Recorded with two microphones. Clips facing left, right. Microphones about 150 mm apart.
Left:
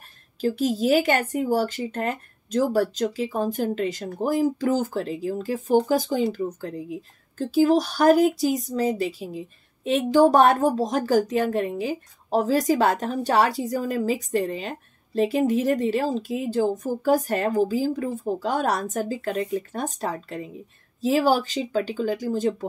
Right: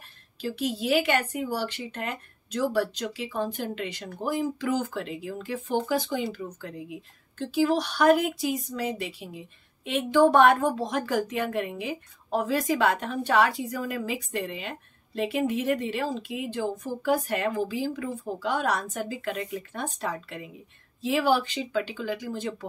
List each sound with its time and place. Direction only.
0.4 s a woman's voice: 40° left (ahead or behind)